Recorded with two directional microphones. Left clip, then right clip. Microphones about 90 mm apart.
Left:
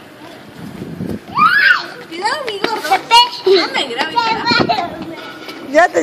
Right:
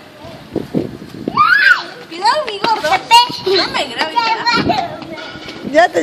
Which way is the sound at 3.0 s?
30° right (ahead or behind).